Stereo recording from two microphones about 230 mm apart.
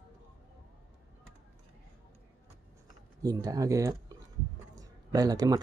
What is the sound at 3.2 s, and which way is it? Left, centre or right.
Speech, centre.